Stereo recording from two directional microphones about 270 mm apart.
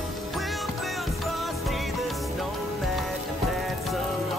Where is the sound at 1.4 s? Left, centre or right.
Centre.